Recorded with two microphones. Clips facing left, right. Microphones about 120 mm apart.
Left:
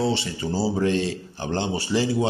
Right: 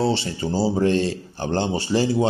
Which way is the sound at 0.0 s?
30° right (ahead or behind).